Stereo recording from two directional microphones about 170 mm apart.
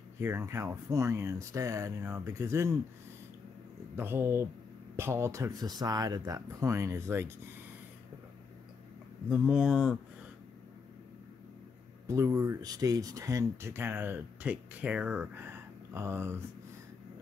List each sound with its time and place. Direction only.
0.2 s speech: 15° right (ahead or behind)
3.9 s speech: 15° right (ahead or behind)
9.3 s speech: 5° right (ahead or behind)
12.1 s speech: 20° right (ahead or behind)